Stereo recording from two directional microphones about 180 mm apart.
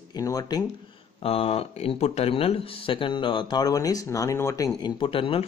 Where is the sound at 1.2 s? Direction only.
35° left (ahead or behind).